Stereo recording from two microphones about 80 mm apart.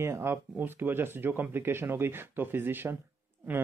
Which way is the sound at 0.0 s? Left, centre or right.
Right.